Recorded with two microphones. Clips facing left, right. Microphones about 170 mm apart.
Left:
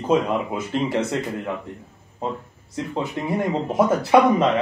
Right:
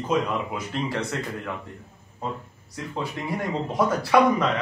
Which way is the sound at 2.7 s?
25° left (ahead or behind).